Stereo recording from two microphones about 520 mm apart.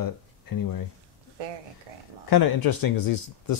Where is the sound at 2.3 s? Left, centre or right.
Left.